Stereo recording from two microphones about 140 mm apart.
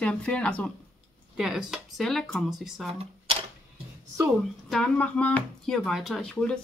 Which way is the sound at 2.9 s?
45° right (ahead or behind).